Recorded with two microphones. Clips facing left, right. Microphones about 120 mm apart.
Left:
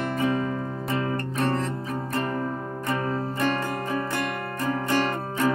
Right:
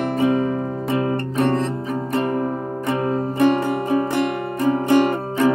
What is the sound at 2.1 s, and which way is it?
Music, 20° right (ahead or behind).